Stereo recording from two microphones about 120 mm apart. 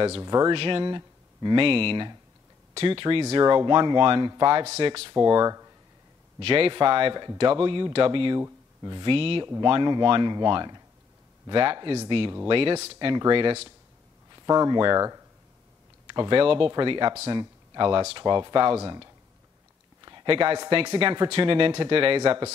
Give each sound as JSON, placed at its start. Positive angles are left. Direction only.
{"t": 0.2, "sound": "speech", "side_deg": -30}
{"t": 0.5, "sound": "speech", "side_deg": -45}
{"t": 3.4, "sound": "speech", "side_deg": -40}
{"t": 5.1, "sound": "speech", "side_deg": -30}
{"t": 6.4, "sound": "speech", "side_deg": -50}
{"t": 8.4, "sound": "a sound", "side_deg": -30}
{"t": 9.0, "sound": "speech", "side_deg": -50}
{"t": 14.3, "sound": "speech", "side_deg": -35}
{"t": 16.1, "sound": "speech", "side_deg": -45}
{"t": 20.2, "sound": "speech", "side_deg": -45}